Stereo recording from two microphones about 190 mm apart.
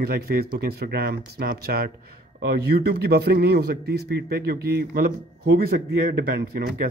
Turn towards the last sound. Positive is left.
turn(degrees=-50)  # may be behind; listen again after turning